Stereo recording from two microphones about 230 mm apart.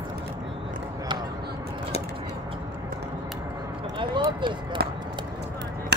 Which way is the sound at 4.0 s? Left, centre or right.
Right.